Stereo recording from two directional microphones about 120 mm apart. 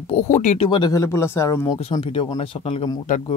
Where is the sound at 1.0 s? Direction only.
20° left (ahead or behind).